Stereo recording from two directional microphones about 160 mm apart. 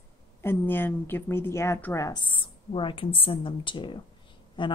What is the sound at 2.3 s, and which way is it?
Speech, 30° left (ahead or behind).